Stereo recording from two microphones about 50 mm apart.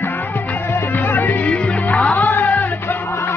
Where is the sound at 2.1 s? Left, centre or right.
Left.